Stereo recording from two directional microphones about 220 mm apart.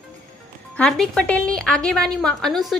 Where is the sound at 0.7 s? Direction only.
5° left (ahead or behind).